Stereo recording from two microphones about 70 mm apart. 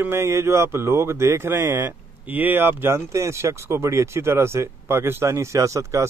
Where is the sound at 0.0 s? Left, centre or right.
Right.